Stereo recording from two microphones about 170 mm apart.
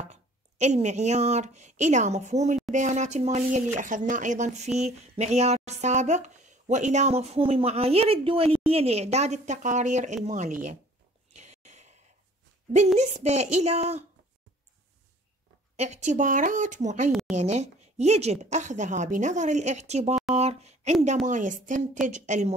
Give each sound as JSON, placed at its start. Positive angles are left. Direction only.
{"t": 0.0, "sound": "speech", "side_deg": -45}
{"t": 11.3, "sound": "a sound", "side_deg": -40}
{"t": 13.0, "sound": "speech", "side_deg": -40}
{"t": 15.7, "sound": "speech", "side_deg": -40}
{"t": 17.1, "sound": "a woman's voice", "side_deg": -5}
{"t": 17.4, "sound": "speech", "side_deg": -40}